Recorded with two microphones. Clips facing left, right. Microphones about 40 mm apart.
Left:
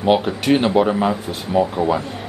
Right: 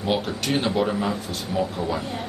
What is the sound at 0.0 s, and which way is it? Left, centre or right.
Speech, left.